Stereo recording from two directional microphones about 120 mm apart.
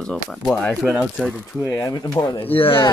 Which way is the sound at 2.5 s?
50° left (ahead or behind).